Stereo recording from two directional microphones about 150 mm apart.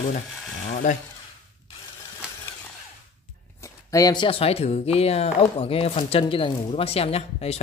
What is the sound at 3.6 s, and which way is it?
Speech, 20° left (ahead or behind).